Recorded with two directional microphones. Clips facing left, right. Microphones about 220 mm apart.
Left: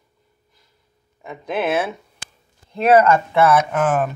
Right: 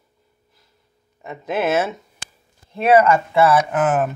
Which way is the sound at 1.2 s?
5° right (ahead or behind).